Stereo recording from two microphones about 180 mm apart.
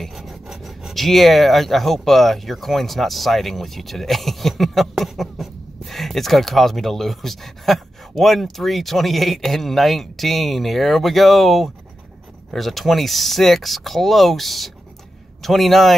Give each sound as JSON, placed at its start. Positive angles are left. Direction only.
{"t": 0.0, "sound": "filing", "side_deg": 0}
{"t": 8.2, "sound": "speech", "side_deg": 0}